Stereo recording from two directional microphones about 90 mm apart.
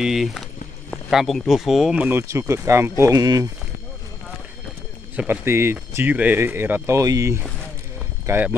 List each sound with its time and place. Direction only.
0.0 s speech: 5° right (ahead or behind)
2.0 s speech: 25° right (ahead or behind)
5.1 s speech: 20° right (ahead or behind)
7.0 s speech: 40° right (ahead or behind)
8.3 s speech: 20° right (ahead or behind)